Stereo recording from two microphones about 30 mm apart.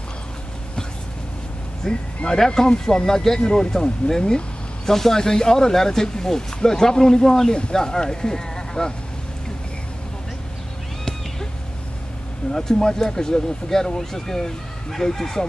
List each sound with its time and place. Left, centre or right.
1.9 s speech: centre
4.8 s speech: centre
12.5 s speech: centre